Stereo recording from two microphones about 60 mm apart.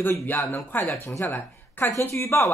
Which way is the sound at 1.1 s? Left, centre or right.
Left.